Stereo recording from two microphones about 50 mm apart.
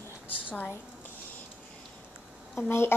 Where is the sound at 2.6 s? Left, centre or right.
Left.